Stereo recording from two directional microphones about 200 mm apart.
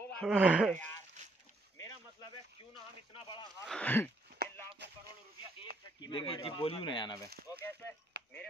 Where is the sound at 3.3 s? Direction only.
20° left (ahead or behind).